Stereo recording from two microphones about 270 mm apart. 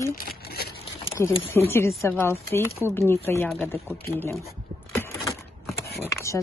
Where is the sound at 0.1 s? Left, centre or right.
Left.